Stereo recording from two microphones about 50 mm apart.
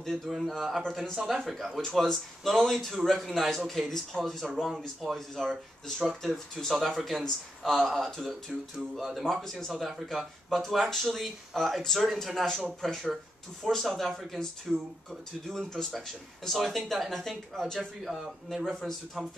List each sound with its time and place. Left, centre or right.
0.3 s a man's voice: centre
6.7 s a man's voice: centre
9.4 s a man's voice: centre